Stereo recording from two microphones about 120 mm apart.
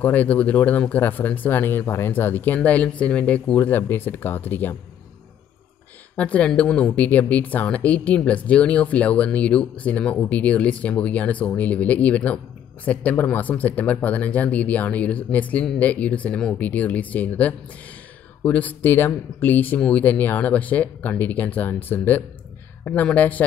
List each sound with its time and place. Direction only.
0.0 s speech: 15° left (ahead or behind)
6.1 s speech: 10° left (ahead or behind)